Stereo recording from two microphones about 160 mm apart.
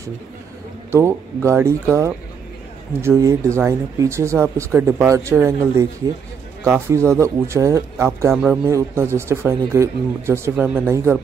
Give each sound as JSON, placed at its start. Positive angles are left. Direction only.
{"t": 0.9, "sound": "speech", "side_deg": -15}